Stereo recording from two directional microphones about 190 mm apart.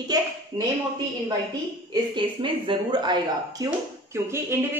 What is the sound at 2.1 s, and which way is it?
Speech, 25° right (ahead or behind).